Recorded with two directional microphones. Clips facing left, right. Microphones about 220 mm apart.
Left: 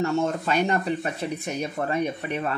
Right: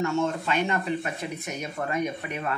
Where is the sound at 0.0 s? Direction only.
40° left (ahead or behind).